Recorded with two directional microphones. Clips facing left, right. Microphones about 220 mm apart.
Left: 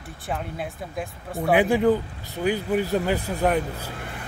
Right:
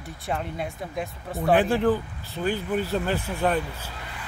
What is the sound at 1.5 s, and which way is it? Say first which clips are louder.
Speech: left 2 dB; 10° left (ahead or behind).